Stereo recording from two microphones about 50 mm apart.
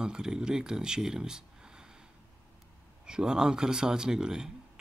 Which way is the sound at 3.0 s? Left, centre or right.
Centre.